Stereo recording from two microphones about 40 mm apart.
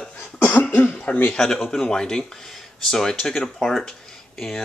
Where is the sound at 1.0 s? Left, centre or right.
Left.